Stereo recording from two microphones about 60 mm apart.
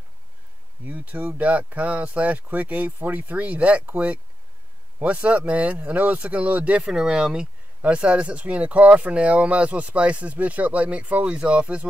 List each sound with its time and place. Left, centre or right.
0.8 s speech: right
6.8 s speech: centre